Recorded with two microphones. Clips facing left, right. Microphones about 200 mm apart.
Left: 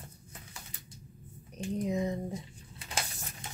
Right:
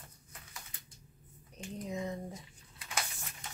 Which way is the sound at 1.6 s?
20° left (ahead or behind).